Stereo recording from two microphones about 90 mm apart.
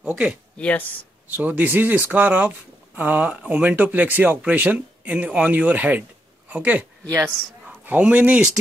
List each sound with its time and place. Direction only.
0.6 s speech: 15° left (ahead or behind)
1.3 s speech: 20° right (ahead or behind)
7.1 s speech: 25° right (ahead or behind); by 8.5 s 10° right (ahead or behind)